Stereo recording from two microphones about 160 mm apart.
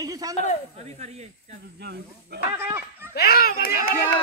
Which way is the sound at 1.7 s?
90° right.